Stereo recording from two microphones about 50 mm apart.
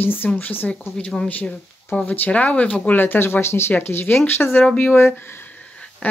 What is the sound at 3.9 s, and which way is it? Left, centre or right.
Speech, left.